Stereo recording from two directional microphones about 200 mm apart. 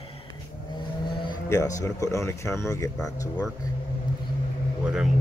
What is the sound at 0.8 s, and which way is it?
Speech, 25° left (ahead or behind).